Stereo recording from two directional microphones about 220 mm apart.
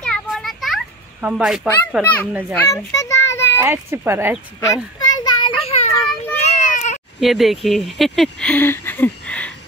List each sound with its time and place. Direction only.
0.0 s children playing: centre (ahead or behind)
2.5 s a child's voice: 15° left (ahead or behind)
3.6 s speech: 10° right (ahead or behind)
4.6 s a sound: 15° left (ahead or behind)
6.6 s baby cry: 35° left (ahead or behind)
7.2 s speech: centre (ahead or behind)